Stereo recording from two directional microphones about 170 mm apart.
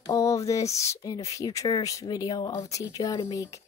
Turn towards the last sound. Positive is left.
turn(degrees=20)  # may be behind; listen again after turning